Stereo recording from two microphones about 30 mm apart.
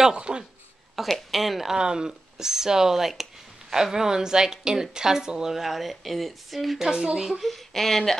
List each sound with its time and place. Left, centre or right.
0.0 s speech: right
1.0 s speech: centre
1.8 s a woman's voice: right
2.3 s a woman's voice: centre
5.5 s speech: centre
6.8 s a woman's voice: right
7.4 s speech: centre